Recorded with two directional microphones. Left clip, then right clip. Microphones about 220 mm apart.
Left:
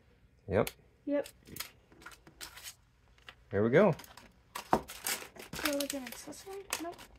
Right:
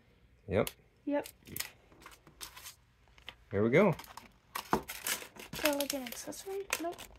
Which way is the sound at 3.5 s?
Centre (ahead or behind).